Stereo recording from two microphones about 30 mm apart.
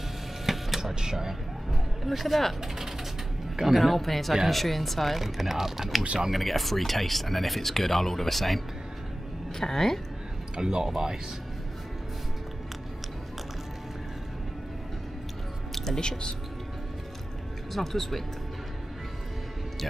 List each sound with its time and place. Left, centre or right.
0.5 s printer: centre
0.9 s speech: centre
2.0 s speech: centre
2.6 s speech: centre
3.7 s speech: centre
6.3 s speech: centre
10.5 s speech: right
15.7 s music: centre
16.0 s speech: left
17.7 s speech: centre